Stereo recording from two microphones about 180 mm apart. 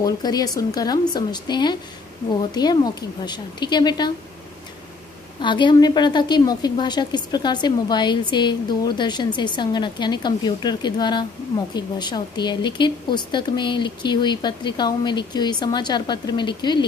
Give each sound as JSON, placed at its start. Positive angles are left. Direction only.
{"t": 0.0, "sound": "a woman's voice", "side_deg": 20}
{"t": 5.4, "sound": "a woman's voice", "side_deg": 25}